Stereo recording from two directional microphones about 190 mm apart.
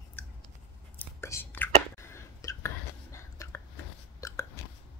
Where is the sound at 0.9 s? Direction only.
10° left (ahead or behind).